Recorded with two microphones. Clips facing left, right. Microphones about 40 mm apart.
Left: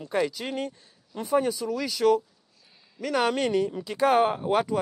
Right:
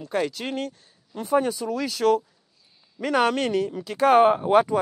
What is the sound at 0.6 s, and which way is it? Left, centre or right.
Speech, centre.